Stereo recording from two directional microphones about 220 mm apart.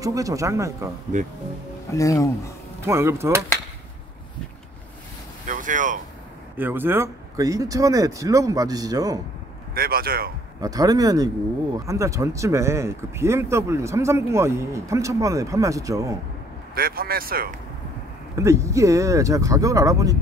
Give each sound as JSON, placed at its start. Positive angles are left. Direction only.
{"t": 0.0, "sound": "speech", "side_deg": -15}
{"t": 1.1, "sound": "speech", "side_deg": -35}
{"t": 1.9, "sound": "speech", "side_deg": 15}
{"t": 2.9, "sound": "speech", "side_deg": -10}
{"t": 5.5, "sound": "a sound", "side_deg": -35}
{"t": 6.5, "sound": "speech", "side_deg": -10}
{"t": 9.8, "sound": "a man's voice", "side_deg": -45}
{"t": 10.6, "sound": "speech", "side_deg": -15}
{"t": 16.7, "sound": "speech", "side_deg": -40}
{"t": 18.3, "sound": "speech", "side_deg": -15}